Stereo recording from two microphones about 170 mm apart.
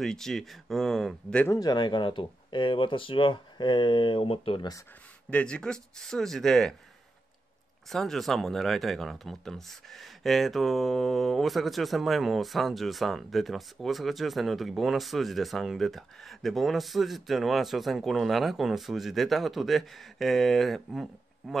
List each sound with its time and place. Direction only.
0.0 s speech: 5° left (ahead or behind)
1.5 s speech: 25° left (ahead or behind)
5.3 s speech: 5° left (ahead or behind)
7.9 s speech: centre (ahead or behind)